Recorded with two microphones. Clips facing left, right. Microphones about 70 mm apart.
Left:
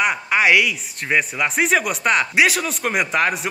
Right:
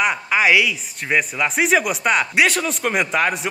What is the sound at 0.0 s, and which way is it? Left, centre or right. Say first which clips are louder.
Speech: even; centre.